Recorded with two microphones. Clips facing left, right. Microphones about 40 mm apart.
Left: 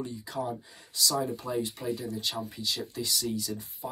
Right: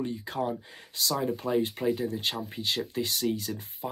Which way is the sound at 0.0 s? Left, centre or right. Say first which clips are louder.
Right 3 dB; right.